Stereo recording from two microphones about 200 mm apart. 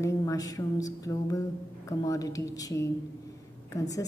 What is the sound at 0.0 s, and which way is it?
A woman's voice, 15° left (ahead or behind).